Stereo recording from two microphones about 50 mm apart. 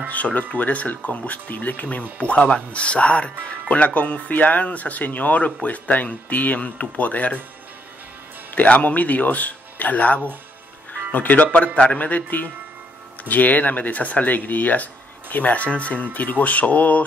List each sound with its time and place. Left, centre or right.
0.1 s speech: left
8.5 s speech: left
13.2 s speech: left